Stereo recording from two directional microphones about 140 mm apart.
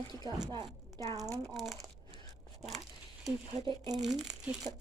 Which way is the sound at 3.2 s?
35° right (ahead or behind).